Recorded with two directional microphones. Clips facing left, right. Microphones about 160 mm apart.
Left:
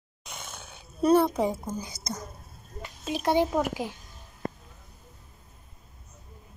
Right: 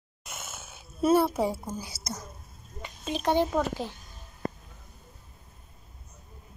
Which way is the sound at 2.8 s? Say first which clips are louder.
Left 1 dB; 10° left (ahead or behind).